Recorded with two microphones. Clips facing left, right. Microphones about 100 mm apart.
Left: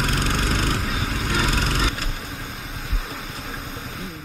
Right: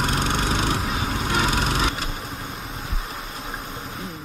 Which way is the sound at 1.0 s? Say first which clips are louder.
Right 2 dB; 20° right (ahead or behind).